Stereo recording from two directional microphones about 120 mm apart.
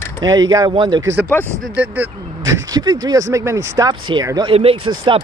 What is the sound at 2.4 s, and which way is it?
Speech, 30° right (ahead or behind).